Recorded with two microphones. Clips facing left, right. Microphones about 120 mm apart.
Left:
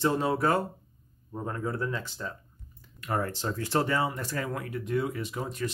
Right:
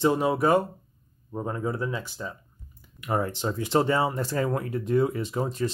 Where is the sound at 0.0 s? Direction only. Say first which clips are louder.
Right 3 dB; 15° right (ahead or behind).